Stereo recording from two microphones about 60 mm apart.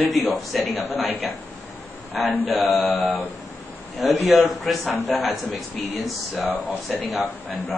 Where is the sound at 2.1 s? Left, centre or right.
Centre.